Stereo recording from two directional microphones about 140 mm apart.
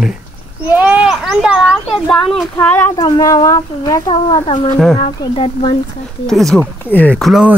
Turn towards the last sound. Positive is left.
turn(degrees=10)  # may be behind; listen again after turning